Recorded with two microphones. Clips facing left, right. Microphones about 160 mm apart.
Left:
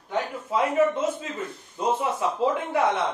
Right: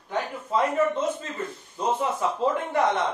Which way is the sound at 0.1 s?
5° left (ahead or behind).